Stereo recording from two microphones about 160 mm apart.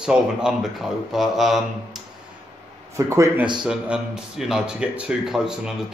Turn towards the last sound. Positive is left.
turn(degrees=-5)  # may be behind; listen again after turning